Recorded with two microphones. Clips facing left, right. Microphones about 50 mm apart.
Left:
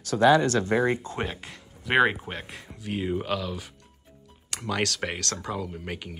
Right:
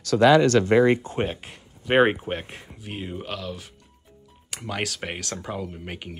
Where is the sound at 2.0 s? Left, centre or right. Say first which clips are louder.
Right 3 dB; right.